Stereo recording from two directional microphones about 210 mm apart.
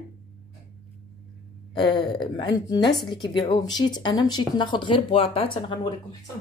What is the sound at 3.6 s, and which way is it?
Speech, 20° left (ahead or behind).